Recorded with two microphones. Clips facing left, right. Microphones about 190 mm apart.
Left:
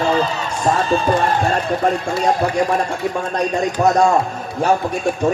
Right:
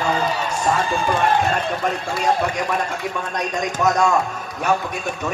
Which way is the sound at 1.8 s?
30° left (ahead or behind).